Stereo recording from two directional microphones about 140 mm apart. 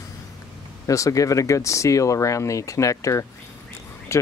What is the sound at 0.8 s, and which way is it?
Speech, 20° left (ahead or behind).